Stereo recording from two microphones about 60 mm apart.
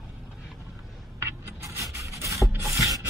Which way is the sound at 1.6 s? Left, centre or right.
Right.